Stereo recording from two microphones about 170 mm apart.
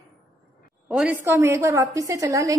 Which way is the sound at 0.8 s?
10° right (ahead or behind).